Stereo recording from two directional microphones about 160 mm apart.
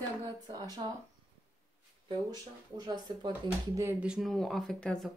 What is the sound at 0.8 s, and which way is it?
Speech, 30° right (ahead or behind).